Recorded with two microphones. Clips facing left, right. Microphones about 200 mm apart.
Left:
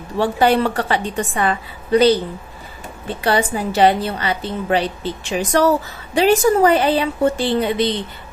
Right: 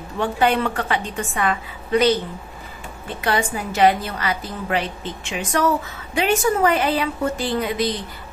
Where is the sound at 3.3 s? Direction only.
35° left (ahead or behind).